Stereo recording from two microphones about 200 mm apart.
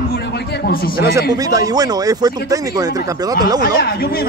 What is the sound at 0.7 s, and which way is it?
Speech, 50° left (ahead or behind).